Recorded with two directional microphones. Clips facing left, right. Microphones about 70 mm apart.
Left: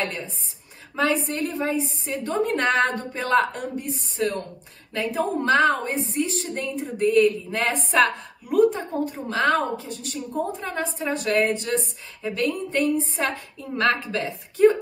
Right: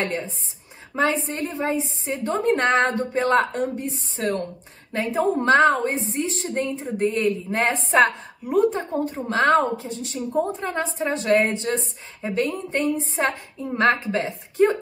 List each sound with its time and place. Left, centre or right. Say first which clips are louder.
0.9 s a woman's voice: right 1 dB; right